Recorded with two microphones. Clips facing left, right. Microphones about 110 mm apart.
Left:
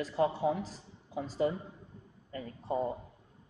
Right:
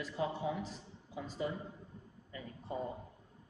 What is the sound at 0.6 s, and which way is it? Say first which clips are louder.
Speech: left 2 dB; 35° left (ahead or behind).